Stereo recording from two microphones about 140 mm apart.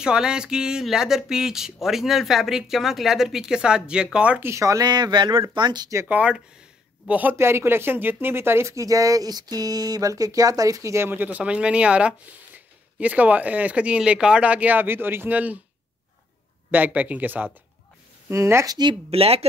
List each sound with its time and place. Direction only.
0.0 s speech: 5° right (ahead or behind); by 5.9 s 30° right (ahead or behind)
5.9 s speech: 10° right (ahead or behind)
16.7 s speech: 10° right (ahead or behind)
18.8 s speech: 40° right (ahead or behind)